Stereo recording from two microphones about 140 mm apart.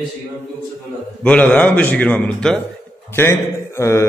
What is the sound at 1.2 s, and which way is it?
A man's voice, 10° left (ahead or behind).